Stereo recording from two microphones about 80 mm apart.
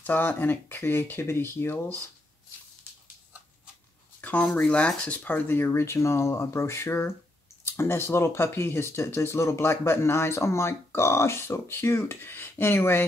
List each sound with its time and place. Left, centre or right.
0.0 s speech: left
4.2 s a sound: centre
4.5 s rub: centre
4.7 s speech: centre